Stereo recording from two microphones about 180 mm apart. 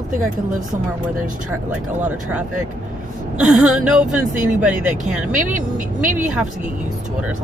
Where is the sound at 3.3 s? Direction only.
5° right (ahead or behind).